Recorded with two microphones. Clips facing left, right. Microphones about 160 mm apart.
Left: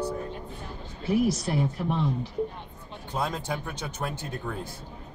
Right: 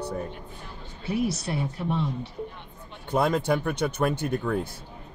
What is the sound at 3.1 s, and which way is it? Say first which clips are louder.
Speech: right 7 dB; 65° right (ahead or behind).